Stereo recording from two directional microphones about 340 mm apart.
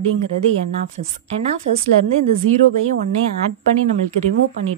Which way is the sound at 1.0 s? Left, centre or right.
Right.